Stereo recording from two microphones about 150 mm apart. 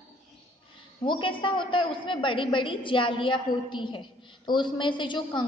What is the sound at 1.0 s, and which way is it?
A woman's voice, 35° left (ahead or behind).